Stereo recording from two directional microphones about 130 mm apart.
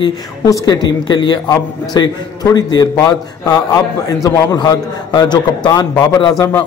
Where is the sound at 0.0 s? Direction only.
35° left (ahead or behind).